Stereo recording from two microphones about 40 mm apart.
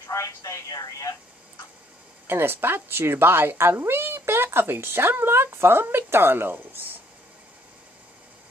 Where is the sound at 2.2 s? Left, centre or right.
Right.